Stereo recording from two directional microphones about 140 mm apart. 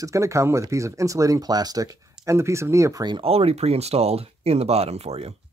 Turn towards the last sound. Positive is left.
turn(degrees=-50)  # may be behind; listen again after turning